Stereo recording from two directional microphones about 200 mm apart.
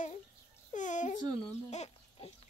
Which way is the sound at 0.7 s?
40° left (ahead or behind).